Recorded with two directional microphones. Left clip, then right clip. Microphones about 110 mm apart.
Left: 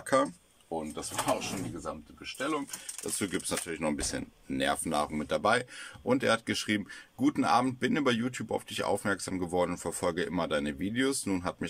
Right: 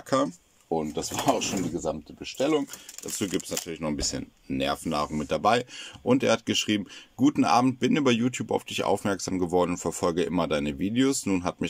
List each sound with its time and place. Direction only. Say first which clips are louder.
0.1 s speech: right 2 dB; 15° right (ahead or behind)
0.7 s speech: right 8 dB; 45° right (ahead or behind)
3.2 s speech: right 4 dB; 20° right (ahead or behind)